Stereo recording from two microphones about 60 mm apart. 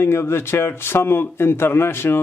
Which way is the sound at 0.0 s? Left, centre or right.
Left.